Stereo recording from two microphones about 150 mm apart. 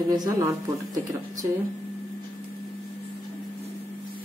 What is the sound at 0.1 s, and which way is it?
Speech, 25° right (ahead or behind).